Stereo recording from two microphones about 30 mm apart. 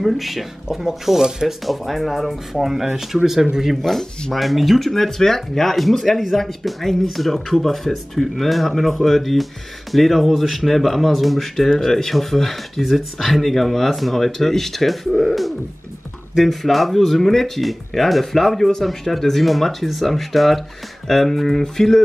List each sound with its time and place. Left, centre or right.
0.0 s speech: centre
0.7 s speech: centre
1.9 s speech: centre
3.2 s speech: centre
3.7 s speech: centre